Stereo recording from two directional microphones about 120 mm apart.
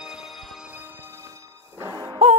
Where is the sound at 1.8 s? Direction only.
30° right (ahead or behind).